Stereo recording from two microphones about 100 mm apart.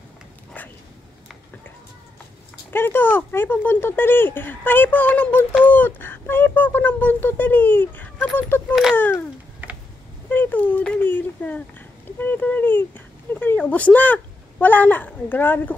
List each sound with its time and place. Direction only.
0.6 s a sound: 15° left (ahead or behind)
2.7 s speech: 20° left (ahead or behind)
10.3 s speech: 20° left (ahead or behind)